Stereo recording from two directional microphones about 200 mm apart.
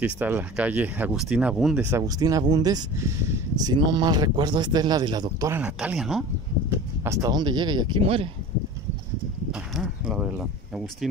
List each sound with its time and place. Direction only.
0.0 s speech: 10° right (ahead or behind)
1.9 s speech: 15° right (ahead or behind)
5.6 s speech: 5° right (ahead or behind)
6.7 s speech: 15° right (ahead or behind)
9.5 s a sound: 5° right (ahead or behind)